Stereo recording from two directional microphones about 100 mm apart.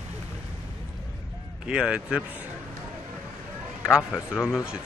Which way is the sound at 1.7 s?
10° right (ahead or behind).